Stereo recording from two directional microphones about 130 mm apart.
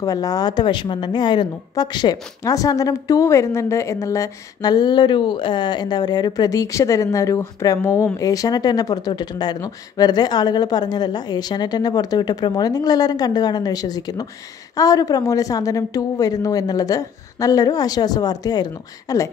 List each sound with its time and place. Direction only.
0.0 s a woman's voice: 25° left (ahead or behind)